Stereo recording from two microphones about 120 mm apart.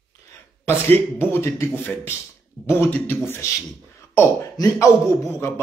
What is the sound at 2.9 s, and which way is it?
Speech, 15° left (ahead or behind).